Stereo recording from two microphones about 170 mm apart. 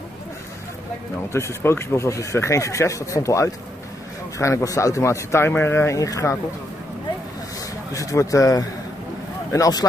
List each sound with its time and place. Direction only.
1.3 s speech: 15° left (ahead or behind)
7.9 s speech: 20° left (ahead or behind)